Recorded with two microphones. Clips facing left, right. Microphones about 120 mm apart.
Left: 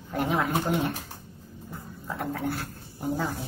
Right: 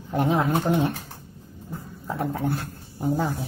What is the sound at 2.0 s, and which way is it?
Speech, 20° right (ahead or behind).